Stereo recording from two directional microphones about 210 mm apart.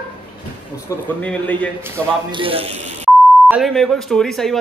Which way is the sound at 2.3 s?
25° right (ahead or behind).